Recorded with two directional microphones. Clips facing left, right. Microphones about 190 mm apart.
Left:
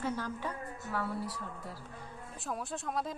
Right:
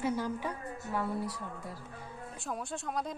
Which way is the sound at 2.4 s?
Centre (ahead or behind).